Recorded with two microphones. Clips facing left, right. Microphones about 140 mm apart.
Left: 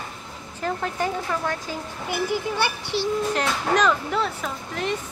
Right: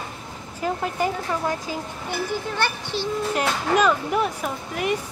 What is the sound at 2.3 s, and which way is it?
Speech, 15° left (ahead or behind).